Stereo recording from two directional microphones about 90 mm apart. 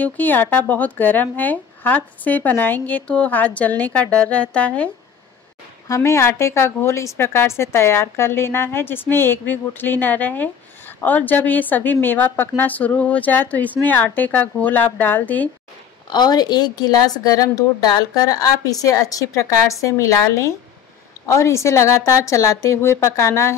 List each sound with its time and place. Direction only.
0.0 s a woman's voice: 20° left (ahead or behind)
5.9 s a woman's voice: 30° left (ahead or behind)
16.1 s a woman's voice: 50° left (ahead or behind); by 23.5 s 30° left (ahead or behind)